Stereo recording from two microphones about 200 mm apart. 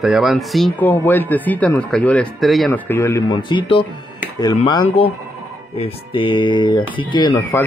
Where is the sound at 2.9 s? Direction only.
15° left (ahead or behind).